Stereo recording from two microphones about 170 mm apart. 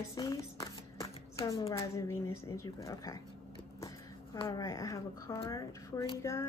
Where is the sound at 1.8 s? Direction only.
15° left (ahead or behind).